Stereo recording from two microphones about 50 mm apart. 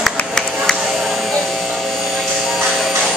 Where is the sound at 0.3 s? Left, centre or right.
Centre.